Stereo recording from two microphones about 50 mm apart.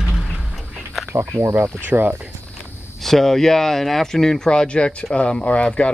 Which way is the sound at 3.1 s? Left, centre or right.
Centre.